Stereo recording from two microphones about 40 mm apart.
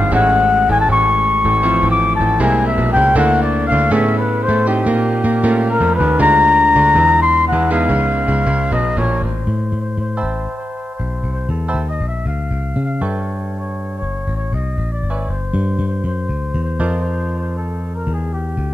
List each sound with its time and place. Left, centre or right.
0.0 s music: right
15.5 s music: right